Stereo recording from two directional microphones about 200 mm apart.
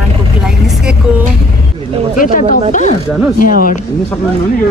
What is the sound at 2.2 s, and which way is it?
Speech, 45° left (ahead or behind).